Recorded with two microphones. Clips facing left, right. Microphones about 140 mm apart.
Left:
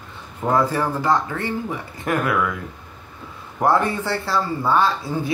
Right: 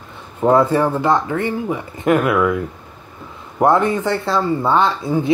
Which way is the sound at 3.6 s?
20° right (ahead or behind).